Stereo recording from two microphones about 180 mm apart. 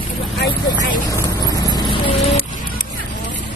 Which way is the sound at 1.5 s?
20° left (ahead or behind).